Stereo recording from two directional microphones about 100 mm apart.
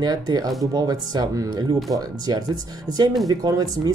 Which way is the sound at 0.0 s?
40° right (ahead or behind).